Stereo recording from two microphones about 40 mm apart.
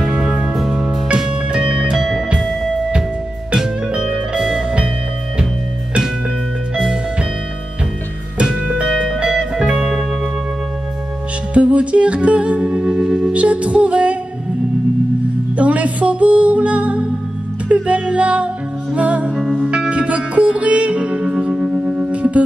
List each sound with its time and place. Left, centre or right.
0.0 s music: right
0.6 s music: centre
1.0 s music: right
2.0 s music: centre
3.5 s music: centre
6.8 s music: right
8.4 s music: right
8.8 s music: centre
11.5 s music: right
13.3 s music: right
15.5 s music: right
19.3 s music: centre
19.9 s music: right